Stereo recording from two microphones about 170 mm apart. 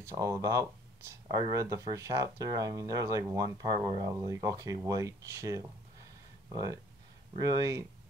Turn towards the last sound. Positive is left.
turn(degrees=-20)  # may be behind; listen again after turning